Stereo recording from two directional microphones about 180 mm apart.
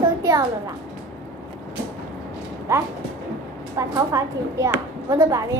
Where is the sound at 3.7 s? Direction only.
15° right (ahead or behind).